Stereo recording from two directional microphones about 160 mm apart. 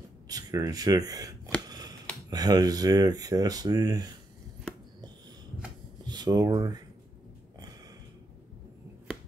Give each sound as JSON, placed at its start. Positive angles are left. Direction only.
{"t": 0.3, "sound": "speech", "side_deg": -25}
{"t": 1.7, "sound": "a sound", "side_deg": -25}
{"t": 2.2, "sound": "speech", "side_deg": -25}
{"t": 6.0, "sound": "speech", "side_deg": -25}